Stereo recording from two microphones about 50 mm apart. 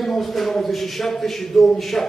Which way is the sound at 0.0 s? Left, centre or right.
Centre.